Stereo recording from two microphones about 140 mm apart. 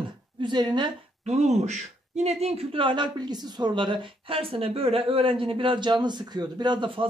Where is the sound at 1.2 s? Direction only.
50° right (ahead or behind).